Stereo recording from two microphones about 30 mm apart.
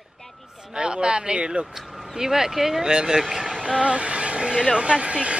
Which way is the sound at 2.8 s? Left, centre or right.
Right.